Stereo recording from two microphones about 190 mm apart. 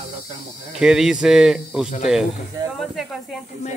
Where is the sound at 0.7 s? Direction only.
5° right (ahead or behind).